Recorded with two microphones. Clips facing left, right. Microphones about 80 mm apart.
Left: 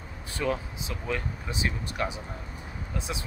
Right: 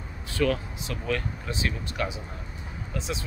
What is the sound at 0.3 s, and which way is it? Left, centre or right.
Speech, left.